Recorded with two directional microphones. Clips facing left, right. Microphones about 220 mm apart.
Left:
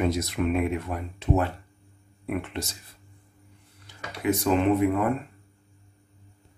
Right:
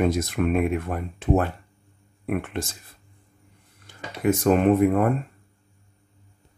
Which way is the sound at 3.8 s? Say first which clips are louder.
Right 4 dB; 50° right (ahead or behind).